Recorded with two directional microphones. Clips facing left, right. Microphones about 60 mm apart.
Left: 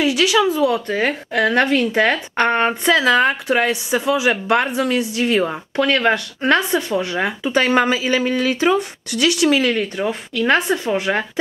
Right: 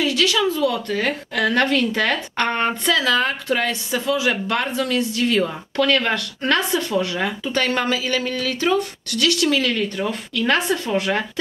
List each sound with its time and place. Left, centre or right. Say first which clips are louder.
0.0 s a woman's voice: left 3 dB; centre